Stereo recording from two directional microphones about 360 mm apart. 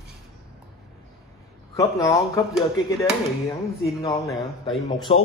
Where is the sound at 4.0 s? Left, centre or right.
Centre.